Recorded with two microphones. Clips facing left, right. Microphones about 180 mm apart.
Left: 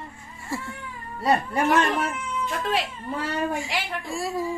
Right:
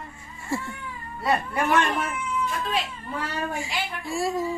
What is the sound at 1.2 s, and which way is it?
Speech, 35° left (ahead or behind).